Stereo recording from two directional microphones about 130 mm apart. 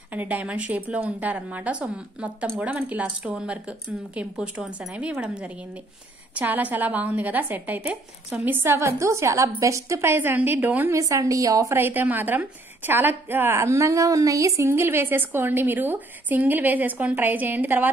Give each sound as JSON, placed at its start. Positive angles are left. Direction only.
{"t": 0.1, "sound": "a woman's voice", "side_deg": -15}
{"t": 11.0, "sound": "a woman's voice", "side_deg": -25}